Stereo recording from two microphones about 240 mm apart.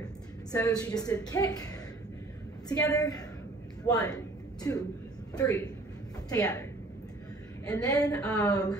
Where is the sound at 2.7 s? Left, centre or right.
Centre.